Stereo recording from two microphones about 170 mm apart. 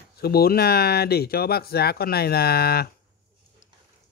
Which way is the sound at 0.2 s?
65° left (ahead or behind).